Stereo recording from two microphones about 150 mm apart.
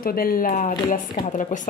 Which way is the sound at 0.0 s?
75° left (ahead or behind).